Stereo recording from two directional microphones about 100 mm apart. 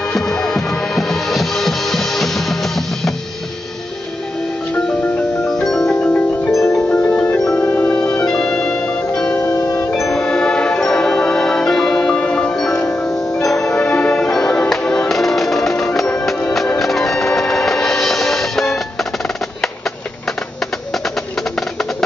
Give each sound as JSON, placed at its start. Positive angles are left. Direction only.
{"t": 0.1, "sound": "music", "side_deg": 5}
{"t": 4.7, "sound": "music", "side_deg": 10}
{"t": 6.6, "sound": "marimba", "side_deg": 30}
{"t": 6.9, "sound": "music", "side_deg": 15}
{"t": 9.4, "sound": "music", "side_deg": 40}
{"t": 9.8, "sound": "music", "side_deg": 5}